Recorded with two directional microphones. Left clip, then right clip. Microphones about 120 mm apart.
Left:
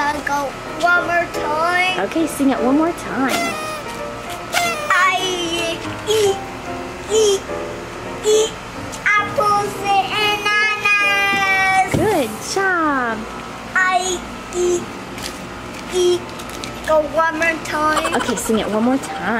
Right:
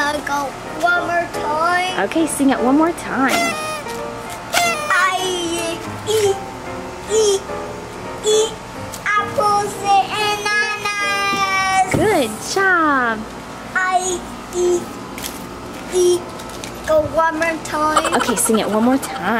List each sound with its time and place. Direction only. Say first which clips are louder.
0.0 s music: even; 5° right (ahead or behind)
2.0 s speech: right 1 dB; 20° right (ahead or behind)
3.3 s speech: right 3 dB; centre (ahead or behind)
4.5 s music: right 1 dB; centre (ahead or behind)
7.1 s a child's voice: even; centre (ahead or behind)
9.0 s child singing: left 1 dB; 5° right (ahead or behind)
11.9 s speech: right 1 dB; 25° right (ahead or behind)
13.7 s a sound: left 1 dB; centre (ahead or behind)
17.2 s speech: even; centre (ahead or behind)
18.3 s speech: right 2 dB; 15° right (ahead or behind)